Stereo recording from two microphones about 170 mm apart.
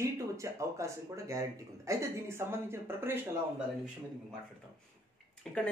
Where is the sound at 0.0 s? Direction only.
15° right (ahead or behind).